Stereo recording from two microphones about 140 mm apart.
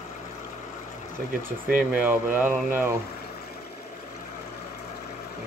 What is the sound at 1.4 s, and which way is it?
Speech, 10° right (ahead or behind).